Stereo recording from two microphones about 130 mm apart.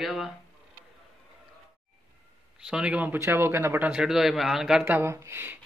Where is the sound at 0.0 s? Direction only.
Centre (ahead or behind).